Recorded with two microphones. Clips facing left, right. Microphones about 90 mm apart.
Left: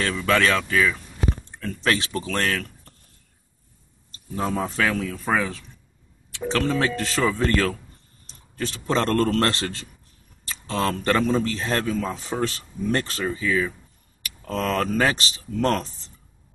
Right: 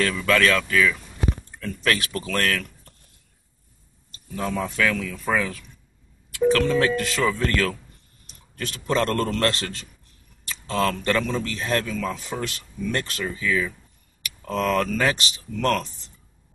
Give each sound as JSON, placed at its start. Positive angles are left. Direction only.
{"t": 0.0, "sound": "speech", "side_deg": 30}
{"t": 4.1, "sound": "a man's voice", "side_deg": 30}
{"t": 10.4, "sound": "a sound", "side_deg": 30}
{"t": 11.0, "sound": "a man's voice", "side_deg": 35}